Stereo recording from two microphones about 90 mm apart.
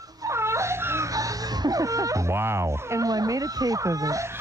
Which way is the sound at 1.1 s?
40° right (ahead or behind).